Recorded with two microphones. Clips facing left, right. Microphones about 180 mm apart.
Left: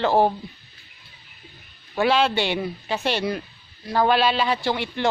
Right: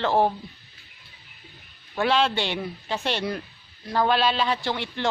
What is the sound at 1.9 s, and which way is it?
A man's voice, 5° left (ahead or behind).